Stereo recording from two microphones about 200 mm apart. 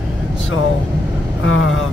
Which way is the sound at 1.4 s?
75° left (ahead or behind).